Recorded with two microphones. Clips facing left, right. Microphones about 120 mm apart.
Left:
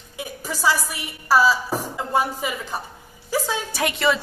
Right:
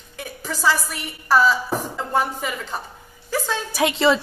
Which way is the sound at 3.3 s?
10° left (ahead or behind).